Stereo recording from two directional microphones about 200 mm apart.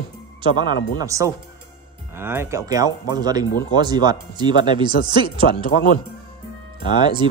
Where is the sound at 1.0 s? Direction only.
15° right (ahead or behind).